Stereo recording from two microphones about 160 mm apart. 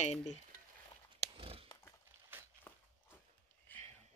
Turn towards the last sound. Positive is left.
turn(degrees=10)  # may be behind; listen again after turning